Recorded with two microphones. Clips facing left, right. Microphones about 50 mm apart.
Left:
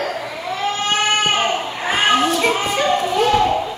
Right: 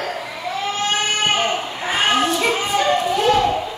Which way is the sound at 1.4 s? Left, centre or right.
Centre.